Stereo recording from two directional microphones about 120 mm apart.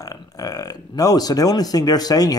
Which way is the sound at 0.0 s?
30° left (ahead or behind).